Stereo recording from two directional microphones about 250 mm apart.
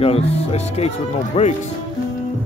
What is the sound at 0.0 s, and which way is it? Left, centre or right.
Speech, left.